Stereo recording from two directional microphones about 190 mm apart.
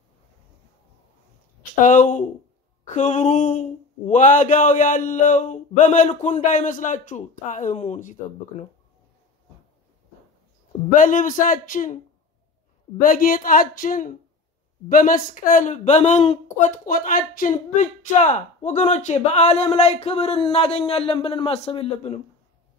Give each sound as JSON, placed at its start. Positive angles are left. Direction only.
{"t": 1.8, "sound": "speech", "side_deg": 40}
{"t": 10.9, "sound": "a man's voice", "side_deg": 45}
{"t": 13.0, "sound": "a man's voice", "side_deg": 45}